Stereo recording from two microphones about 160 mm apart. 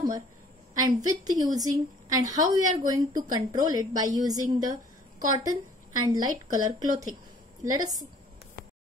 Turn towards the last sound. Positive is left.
turn(degrees=-25)  # may be behind; listen again after turning